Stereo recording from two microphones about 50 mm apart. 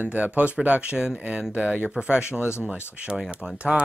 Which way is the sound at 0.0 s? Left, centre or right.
Right.